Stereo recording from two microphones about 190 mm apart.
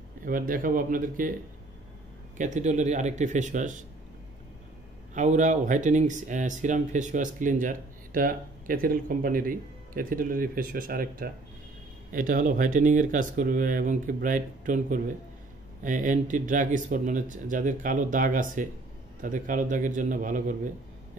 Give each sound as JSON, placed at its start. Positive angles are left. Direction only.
{"t": 0.2, "sound": "speech", "side_deg": -45}
{"t": 2.3, "sound": "a man's voice", "side_deg": -40}
{"t": 5.1, "sound": "speech", "side_deg": -40}